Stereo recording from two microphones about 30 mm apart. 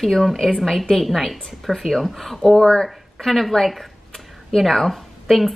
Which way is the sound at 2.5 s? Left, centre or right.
Left.